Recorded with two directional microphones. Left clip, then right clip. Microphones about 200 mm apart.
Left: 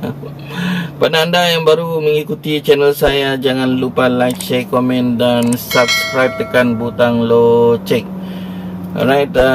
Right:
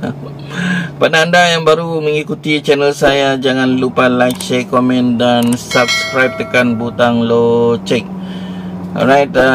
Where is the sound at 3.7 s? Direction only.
15° left (ahead or behind).